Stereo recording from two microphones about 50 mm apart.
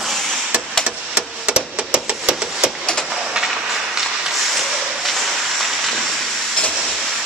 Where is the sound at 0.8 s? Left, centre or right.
Centre.